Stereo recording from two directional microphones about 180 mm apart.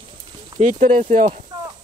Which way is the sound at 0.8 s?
45° right (ahead or behind).